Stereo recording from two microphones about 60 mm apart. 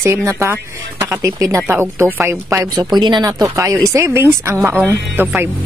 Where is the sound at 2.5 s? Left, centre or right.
Right.